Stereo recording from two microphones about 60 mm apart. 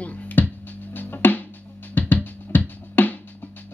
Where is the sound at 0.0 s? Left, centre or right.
Left.